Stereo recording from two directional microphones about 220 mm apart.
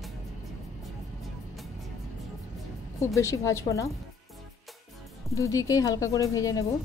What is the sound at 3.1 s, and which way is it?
Speech, 15° left (ahead or behind).